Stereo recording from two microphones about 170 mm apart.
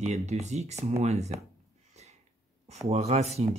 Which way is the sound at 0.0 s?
40° right (ahead or behind).